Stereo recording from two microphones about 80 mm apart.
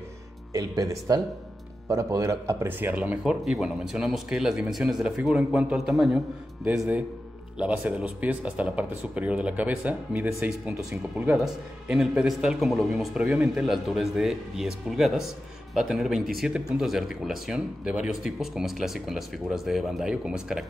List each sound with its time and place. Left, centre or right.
0.5 s speech: right
2.9 s speech: centre
3.4 s speech: centre
5.8 s speech: centre
7.9 s speech: centre
10.8 s speech: centre